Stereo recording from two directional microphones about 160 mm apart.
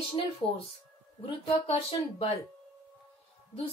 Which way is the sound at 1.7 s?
40° left (ahead or behind).